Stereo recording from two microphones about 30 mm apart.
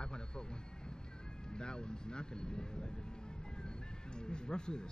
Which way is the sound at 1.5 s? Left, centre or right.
Left.